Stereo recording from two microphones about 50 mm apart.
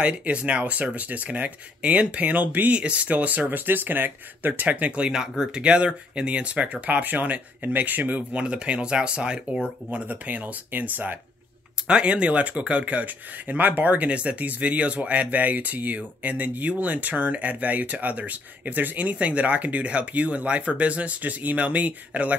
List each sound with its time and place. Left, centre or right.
0.0 s speech: right
3.4 s speech: right
8.4 s speech: right
11.9 s speech: right